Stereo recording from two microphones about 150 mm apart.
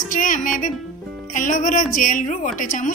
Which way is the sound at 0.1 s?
60° left (ahead or behind).